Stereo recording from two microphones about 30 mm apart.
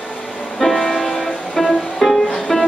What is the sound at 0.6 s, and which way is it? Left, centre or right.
Music, centre.